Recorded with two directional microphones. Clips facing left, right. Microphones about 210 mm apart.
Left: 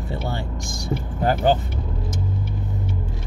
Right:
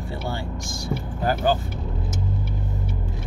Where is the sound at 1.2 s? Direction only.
20° left (ahead or behind).